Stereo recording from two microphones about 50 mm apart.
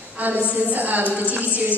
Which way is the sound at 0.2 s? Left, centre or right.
Right.